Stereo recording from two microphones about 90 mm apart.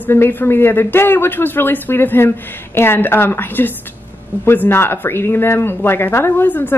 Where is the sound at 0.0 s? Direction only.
25° left (ahead or behind).